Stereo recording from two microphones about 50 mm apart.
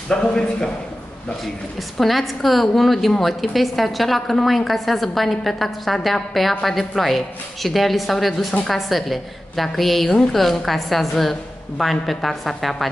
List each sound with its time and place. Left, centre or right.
0.1 s a man's voice: centre
1.4 s a woman's voice: centre